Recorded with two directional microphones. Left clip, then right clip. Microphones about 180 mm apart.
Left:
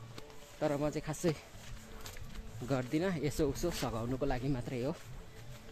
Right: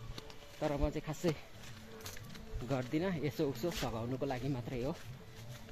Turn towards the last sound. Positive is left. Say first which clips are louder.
# left 2 dB
turn(degrees=30)  # may be behind; listen again after turning